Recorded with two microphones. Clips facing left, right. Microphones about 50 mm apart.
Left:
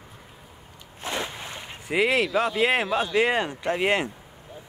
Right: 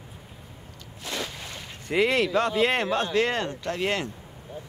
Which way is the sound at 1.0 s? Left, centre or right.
Left.